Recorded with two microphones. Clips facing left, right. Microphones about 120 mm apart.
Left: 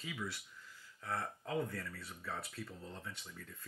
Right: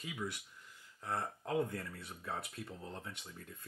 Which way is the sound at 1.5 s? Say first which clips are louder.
Right 3 dB; 20° right (ahead or behind).